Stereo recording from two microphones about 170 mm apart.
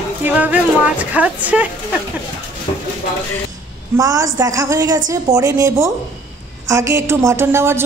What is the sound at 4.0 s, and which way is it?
A woman's voice, 20° right (ahead or behind).